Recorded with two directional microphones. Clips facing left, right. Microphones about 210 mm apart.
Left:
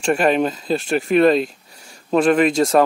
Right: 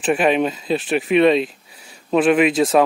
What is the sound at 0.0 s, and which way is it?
Speech, centre (ahead or behind).